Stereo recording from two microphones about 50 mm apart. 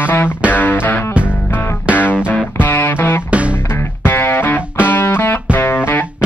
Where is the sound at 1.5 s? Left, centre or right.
Left.